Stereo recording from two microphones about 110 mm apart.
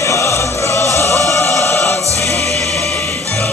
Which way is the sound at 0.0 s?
25° left (ahead or behind).